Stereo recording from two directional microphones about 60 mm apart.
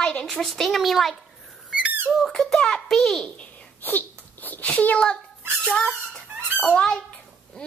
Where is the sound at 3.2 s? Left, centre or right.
Left.